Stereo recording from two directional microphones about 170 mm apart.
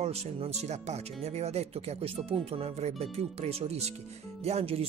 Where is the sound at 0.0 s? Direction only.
40° right (ahead or behind).